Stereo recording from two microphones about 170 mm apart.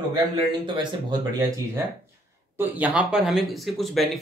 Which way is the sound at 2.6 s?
10° right (ahead or behind).